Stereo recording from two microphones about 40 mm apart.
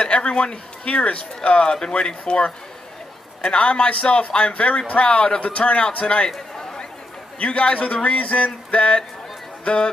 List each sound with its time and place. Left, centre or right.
0.0 s speech: left
6.5 s chatter: centre
7.3 s a man's voice: left